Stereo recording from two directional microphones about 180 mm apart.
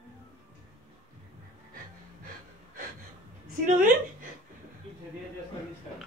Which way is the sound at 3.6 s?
50° right (ahead or behind).